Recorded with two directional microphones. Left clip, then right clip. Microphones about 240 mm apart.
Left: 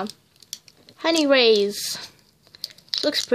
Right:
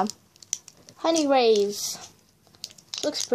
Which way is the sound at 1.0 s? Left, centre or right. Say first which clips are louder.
Left 3 dB; centre.